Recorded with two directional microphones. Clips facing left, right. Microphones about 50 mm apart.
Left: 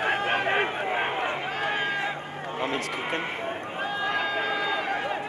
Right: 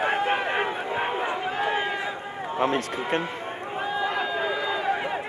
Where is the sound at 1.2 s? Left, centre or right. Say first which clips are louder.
Right 2 dB; centre.